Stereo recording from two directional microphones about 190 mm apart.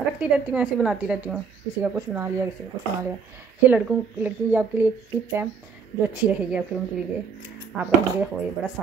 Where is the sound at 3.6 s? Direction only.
10° right (ahead or behind).